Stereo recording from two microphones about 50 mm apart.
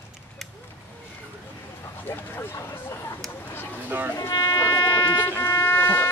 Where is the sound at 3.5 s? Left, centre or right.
Left.